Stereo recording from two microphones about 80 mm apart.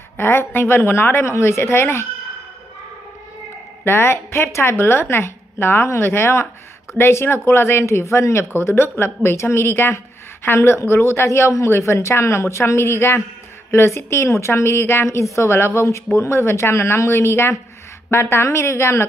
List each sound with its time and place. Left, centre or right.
0.2 s a woman's voice: left
3.8 s a woman's voice: left